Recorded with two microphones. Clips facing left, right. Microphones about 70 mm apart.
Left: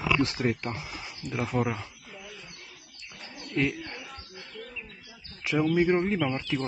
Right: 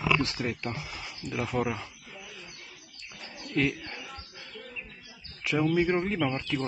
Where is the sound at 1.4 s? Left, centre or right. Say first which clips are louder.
Left 2 dB; centre.